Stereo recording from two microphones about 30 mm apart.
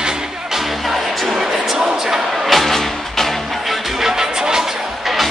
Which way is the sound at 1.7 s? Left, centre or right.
Centre.